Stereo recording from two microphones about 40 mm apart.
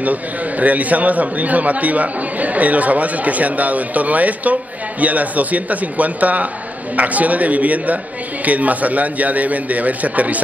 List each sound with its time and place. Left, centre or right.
0.0 s a man's voice: right